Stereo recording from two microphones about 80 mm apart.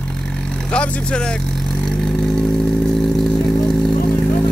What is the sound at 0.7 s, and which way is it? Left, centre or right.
Vehicle, centre.